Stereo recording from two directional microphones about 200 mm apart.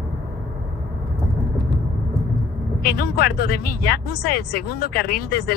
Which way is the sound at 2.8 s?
50° left (ahead or behind).